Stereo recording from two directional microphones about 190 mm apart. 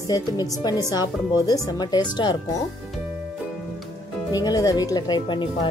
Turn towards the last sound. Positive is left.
turn(degrees=25)  # may be behind; listen again after turning